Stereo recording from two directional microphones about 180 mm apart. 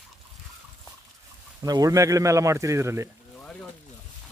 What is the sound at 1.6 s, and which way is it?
Speech, 20° right (ahead or behind).